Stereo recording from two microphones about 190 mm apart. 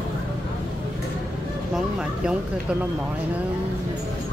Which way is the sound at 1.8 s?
5° right (ahead or behind).